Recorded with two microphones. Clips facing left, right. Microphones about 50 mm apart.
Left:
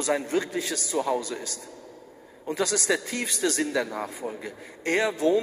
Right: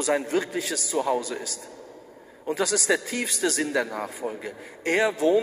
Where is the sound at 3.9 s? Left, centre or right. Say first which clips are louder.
Right 1 dB; right.